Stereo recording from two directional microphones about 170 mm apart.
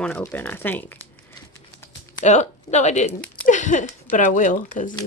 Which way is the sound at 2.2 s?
45° left (ahead or behind).